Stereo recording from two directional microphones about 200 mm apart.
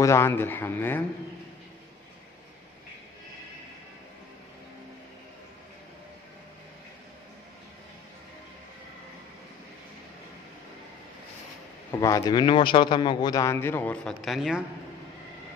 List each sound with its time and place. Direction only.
0.0 s a man's voice: 15° left (ahead or behind)
11.9 s a man's voice: 15° left (ahead or behind); by 14.6 s centre (ahead or behind)